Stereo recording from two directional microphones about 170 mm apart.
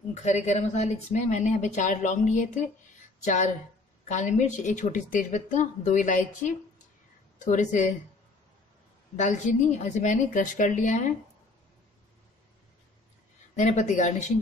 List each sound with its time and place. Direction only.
0.1 s a woman's voice: 45° left (ahead or behind)
9.1 s a woman's voice: 45° left (ahead or behind)
13.6 s a woman's voice: 45° left (ahead or behind)